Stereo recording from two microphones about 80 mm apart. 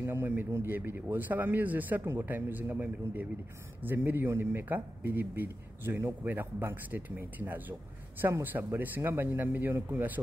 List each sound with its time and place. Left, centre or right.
0.0 s speech: right